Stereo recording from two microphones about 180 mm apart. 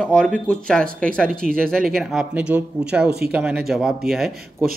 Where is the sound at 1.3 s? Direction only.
50° right (ahead or behind).